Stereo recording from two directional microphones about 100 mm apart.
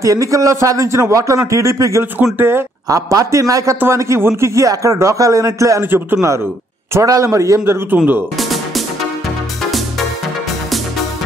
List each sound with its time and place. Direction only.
0.0 s a man's voice: 35° right (ahead or behind)
2.9 s a man's voice: 35° right (ahead or behind)
6.9 s a man's voice: 30° right (ahead or behind)
8.4 s music: centre (ahead or behind)